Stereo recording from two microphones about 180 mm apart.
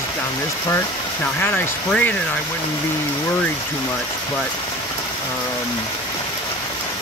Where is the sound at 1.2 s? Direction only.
10° left (ahead or behind).